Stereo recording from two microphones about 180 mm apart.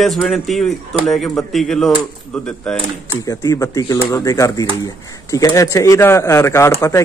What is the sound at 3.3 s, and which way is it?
Speech, 15° left (ahead or behind).